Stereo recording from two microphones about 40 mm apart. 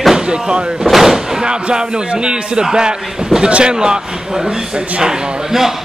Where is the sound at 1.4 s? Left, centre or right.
Right.